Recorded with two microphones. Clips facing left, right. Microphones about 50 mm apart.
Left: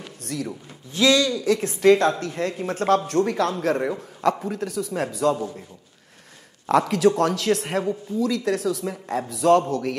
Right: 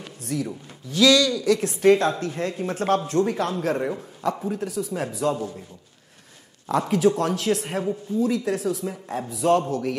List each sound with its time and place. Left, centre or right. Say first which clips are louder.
0.2 s speech: right 2 dB; left
0.9 s speech: right 1 dB; left
3.1 s speech: left 1 dB; left
3.7 s speech: left 1 dB; left
4.2 s speech: left 3 dB; left
6.7 s speech: left 2 dB; left